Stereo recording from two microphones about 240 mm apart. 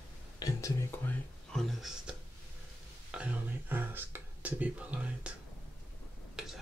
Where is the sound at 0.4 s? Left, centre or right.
Centre.